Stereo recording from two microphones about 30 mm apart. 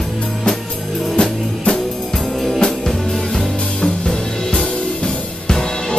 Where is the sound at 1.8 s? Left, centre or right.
Centre.